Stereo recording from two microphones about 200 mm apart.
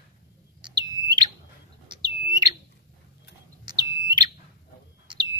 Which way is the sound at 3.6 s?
20° right (ahead or behind).